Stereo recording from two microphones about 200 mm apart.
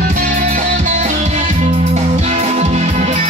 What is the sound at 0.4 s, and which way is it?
Music, 40° right (ahead or behind).